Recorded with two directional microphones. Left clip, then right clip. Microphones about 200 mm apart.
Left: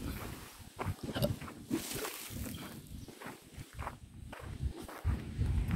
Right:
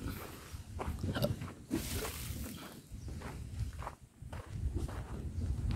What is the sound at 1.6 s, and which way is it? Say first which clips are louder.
Boat: left 1 dB; 45° left (ahead or behind).